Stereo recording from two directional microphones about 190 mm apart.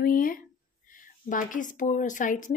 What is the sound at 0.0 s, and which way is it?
Speech, 50° left (ahead or behind).